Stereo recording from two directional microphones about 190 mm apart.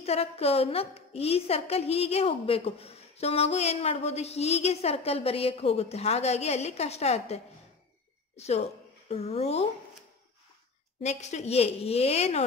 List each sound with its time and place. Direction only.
0.0 s a woman's voice: 30° left (ahead or behind)
11.0 s a woman's voice: 35° left (ahead or behind)